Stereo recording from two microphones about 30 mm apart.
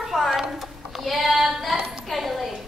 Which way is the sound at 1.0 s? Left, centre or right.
Centre.